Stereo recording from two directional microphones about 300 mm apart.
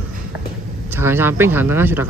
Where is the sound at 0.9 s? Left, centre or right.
Centre.